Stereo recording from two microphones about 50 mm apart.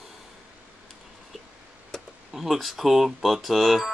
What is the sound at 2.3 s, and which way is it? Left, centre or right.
Speech, centre.